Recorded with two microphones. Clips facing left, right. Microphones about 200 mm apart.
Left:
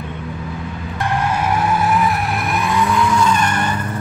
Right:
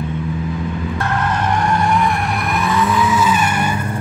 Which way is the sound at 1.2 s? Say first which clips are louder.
Even; 5° left (ahead or behind).